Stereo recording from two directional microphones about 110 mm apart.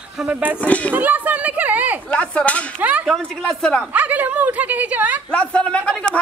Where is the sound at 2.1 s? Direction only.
10° left (ahead or behind).